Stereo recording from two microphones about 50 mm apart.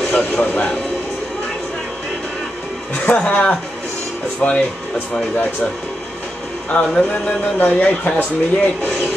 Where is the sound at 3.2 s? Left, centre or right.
Left.